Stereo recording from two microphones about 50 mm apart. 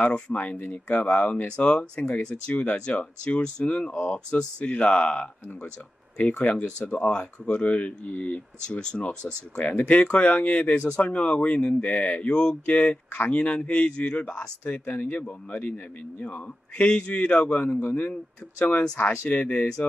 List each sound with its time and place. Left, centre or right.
0.0 s speech: left
8.6 s speech: centre
17.7 s speech: left
18.1 s speech: left